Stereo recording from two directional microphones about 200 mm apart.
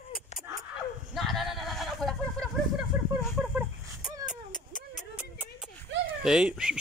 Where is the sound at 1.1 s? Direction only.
Centre (ahead or behind).